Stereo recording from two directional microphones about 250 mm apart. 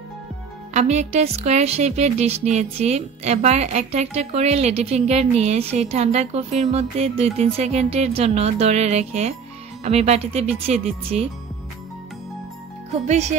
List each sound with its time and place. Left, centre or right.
0.7 s a woman's voice: right
13.1 s a woman's voice: right